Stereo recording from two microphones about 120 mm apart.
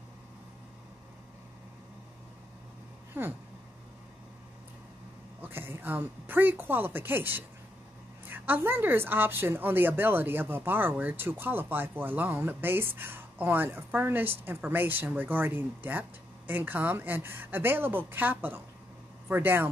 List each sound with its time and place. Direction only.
3.1 s a woman's voice: 15° right (ahead or behind)
5.4 s a woman's voice: 20° right (ahead or behind)